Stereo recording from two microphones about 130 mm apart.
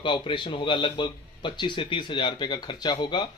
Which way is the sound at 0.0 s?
40° left (ahead or behind).